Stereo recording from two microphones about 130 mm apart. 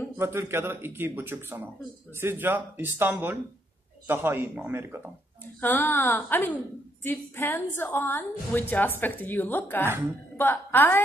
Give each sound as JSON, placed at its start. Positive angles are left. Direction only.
{"t": 0.2, "sound": "speech", "side_deg": -20}
{"t": 5.6, "sound": "a woman's voice", "side_deg": 15}